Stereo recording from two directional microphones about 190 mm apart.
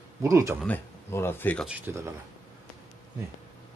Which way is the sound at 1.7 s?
15° right (ahead or behind).